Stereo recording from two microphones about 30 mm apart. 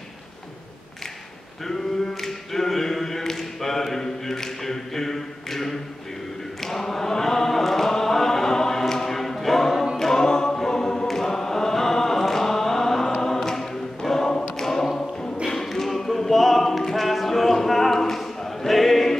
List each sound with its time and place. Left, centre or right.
1.7 s a capella: centre
6.6 s chant: centre
9.9 s choir: centre
15.5 s a capella: centre